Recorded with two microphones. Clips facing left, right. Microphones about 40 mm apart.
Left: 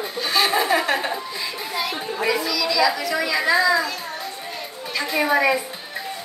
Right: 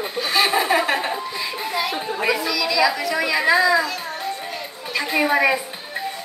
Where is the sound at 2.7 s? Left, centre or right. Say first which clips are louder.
Right 1 dB; centre.